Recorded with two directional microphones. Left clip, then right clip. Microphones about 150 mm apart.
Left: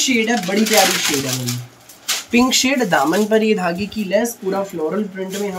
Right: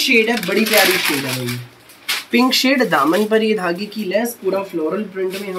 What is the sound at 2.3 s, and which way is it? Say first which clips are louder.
Speech: right 1 dB; 20° left (ahead or behind).